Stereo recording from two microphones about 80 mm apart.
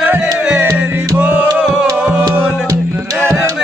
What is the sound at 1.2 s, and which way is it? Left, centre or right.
Music, right.